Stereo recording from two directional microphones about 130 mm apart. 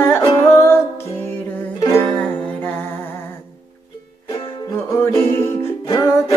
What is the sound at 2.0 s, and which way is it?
Music, 15° left (ahead or behind).